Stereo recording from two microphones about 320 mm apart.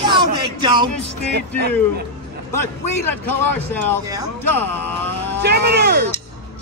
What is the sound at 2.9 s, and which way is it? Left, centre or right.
A man's voice, left.